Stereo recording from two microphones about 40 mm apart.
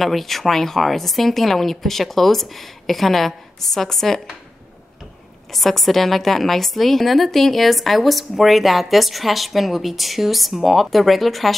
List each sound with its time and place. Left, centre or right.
0.0 s a woman's voice: centre
5.5 s a woman's voice: centre